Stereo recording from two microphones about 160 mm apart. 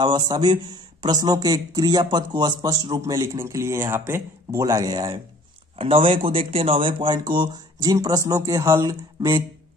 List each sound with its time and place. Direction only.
0.0 s speech: 30° right (ahead or behind)